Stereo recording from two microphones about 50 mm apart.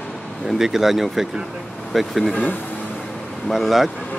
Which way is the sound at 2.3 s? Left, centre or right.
Left.